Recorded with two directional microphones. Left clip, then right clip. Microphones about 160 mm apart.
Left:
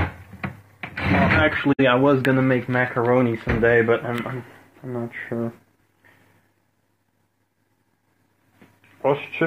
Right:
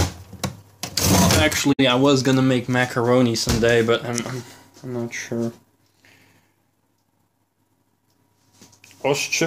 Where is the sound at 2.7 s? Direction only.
45° right (ahead or behind); by 5.5 s 25° right (ahead or behind).